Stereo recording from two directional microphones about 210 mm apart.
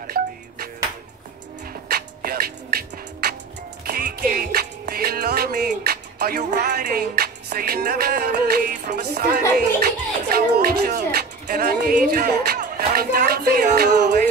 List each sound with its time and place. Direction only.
0.0 s music: 45° right (ahead or behind)
1.9 s music: 45° right (ahead or behind)
9.8 s speech: 45° right (ahead or behind)